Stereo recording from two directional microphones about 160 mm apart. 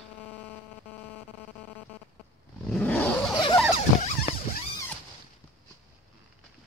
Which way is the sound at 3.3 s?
30° left (ahead or behind).